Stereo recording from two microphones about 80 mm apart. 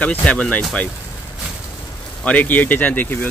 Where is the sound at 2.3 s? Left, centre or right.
Centre.